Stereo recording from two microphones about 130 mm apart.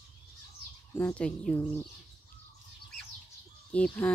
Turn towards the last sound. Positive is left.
turn(degrees=10)  # may be behind; listen again after turning